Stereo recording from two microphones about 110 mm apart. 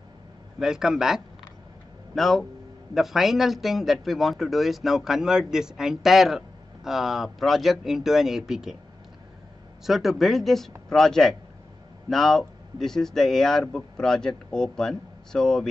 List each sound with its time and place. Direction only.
0.6 s a man's voice: 5° right (ahead or behind)
9.8 s a man's voice: centre (ahead or behind)